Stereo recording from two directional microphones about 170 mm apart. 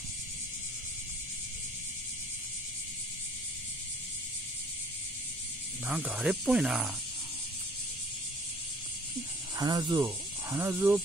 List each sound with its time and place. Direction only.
5.9 s speech: 10° right (ahead or behind)
9.6 s speech: 25° right (ahead or behind)
10.0 s cricket: 15° right (ahead or behind)